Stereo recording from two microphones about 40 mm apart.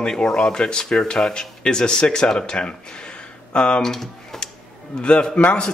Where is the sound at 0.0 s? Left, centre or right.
Centre.